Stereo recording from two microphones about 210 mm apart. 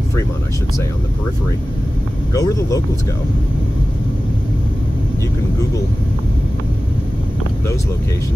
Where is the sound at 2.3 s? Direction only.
15° left (ahead or behind).